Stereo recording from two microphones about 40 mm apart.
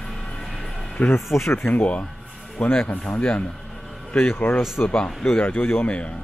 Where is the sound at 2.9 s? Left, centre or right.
Left.